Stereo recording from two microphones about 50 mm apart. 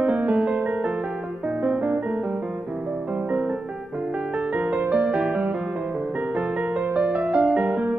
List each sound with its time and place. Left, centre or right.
0.0 s music: right
1.6 s music: right
4.8 s music: right
6.9 s music: right